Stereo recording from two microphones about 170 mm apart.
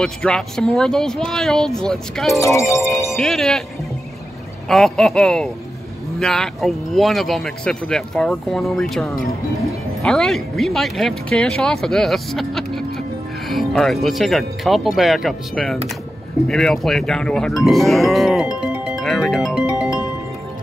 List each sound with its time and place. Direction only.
0.0 s speech: 5° left (ahead or behind)
2.3 s speech: 15° left (ahead or behind)
3.1 s speech: centre (ahead or behind)
4.6 s speech: centre (ahead or behind)
13.5 s music: centre (ahead or behind)
14.0 s speech: centre (ahead or behind)
19.5 s music: 5° right (ahead or behind)